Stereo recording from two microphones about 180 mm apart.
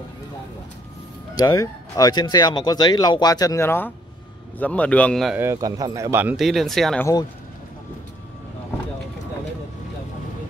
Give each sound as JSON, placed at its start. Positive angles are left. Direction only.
{"t": 1.3, "sound": "speech", "side_deg": 20}
{"t": 5.4, "sound": "speech", "side_deg": -15}